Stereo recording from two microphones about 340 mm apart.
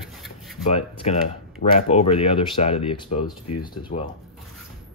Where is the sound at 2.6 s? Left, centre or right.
Centre.